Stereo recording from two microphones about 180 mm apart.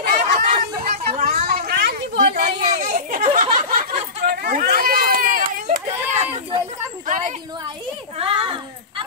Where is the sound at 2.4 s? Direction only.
45° right (ahead or behind).